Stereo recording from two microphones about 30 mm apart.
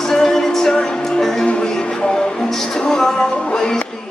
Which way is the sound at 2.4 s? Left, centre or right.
Centre.